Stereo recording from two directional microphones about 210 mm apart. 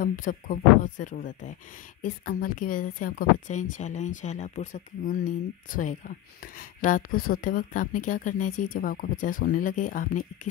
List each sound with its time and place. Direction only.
0.0 s speech: 40° left (ahead or behind)